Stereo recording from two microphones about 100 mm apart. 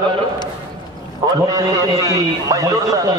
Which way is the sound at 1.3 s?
35° right (ahead or behind).